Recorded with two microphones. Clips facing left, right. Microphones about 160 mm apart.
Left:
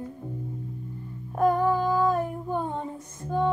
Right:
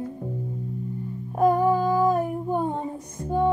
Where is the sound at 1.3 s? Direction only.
15° right (ahead or behind).